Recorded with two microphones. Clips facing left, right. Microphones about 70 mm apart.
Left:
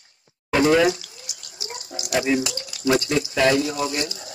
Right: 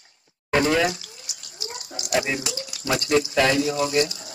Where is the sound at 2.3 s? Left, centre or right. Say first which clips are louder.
Left 6 dB; left.